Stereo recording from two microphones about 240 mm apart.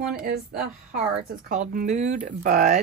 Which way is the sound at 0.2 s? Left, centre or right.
Right.